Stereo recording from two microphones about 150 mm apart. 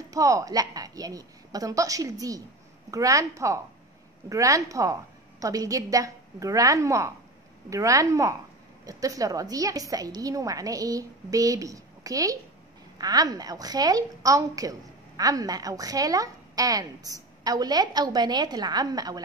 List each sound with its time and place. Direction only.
0.1 s a woman's voice: 20° right (ahead or behind)